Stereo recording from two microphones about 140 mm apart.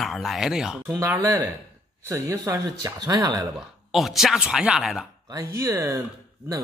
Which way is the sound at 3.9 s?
Centre (ahead or behind).